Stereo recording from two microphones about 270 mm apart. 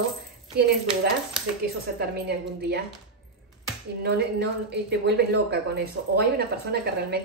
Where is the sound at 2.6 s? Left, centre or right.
Right.